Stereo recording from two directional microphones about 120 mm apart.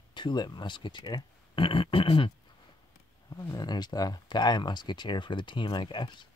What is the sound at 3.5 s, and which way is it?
Speech, 35° left (ahead or behind).